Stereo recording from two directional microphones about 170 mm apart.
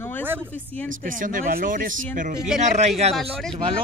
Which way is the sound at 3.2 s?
Centre (ahead or behind).